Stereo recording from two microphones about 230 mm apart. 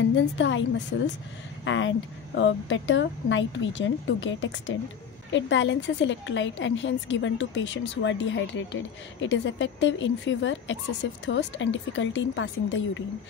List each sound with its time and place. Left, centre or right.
0.1 s a woman's voice: left